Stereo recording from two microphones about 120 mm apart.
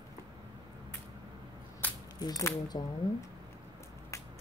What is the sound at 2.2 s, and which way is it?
Speech, 35° left (ahead or behind).